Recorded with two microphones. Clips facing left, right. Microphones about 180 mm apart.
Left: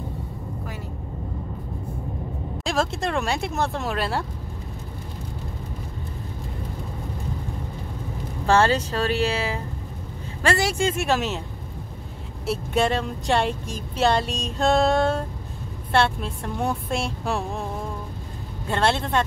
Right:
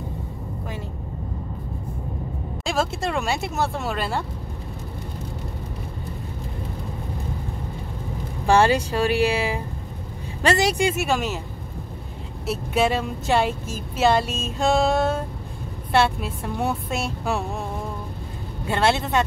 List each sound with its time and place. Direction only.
2.6 s speech: centre (ahead or behind)
8.5 s speech: 15° right (ahead or behind)
11.0 s speech: centre (ahead or behind)
12.4 s speech: 5° right (ahead or behind)
18.7 s speech: 5° right (ahead or behind)